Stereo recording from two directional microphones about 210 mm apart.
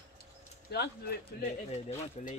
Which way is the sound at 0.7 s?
50° left (ahead or behind).